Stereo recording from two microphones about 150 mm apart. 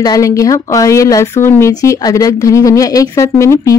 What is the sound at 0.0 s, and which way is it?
Speech, 25° left (ahead or behind).